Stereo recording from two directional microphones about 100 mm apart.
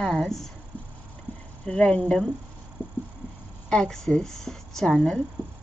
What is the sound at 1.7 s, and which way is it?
Speech, 10° left (ahead or behind).